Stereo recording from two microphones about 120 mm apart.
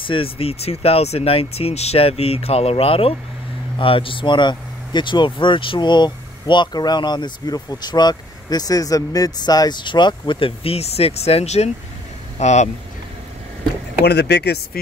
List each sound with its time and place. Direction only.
0.0 s speech: 50° left (ahead or behind); by 12.6 s 70° left (ahead or behind)